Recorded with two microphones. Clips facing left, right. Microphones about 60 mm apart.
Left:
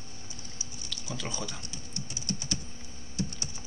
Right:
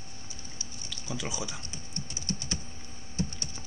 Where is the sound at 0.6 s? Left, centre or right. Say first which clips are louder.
Even; centre.